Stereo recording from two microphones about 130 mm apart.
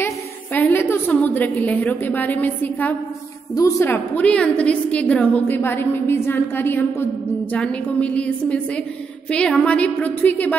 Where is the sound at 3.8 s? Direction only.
10° left (ahead or behind).